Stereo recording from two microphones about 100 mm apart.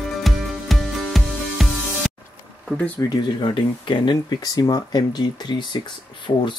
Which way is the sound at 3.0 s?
45° left (ahead or behind).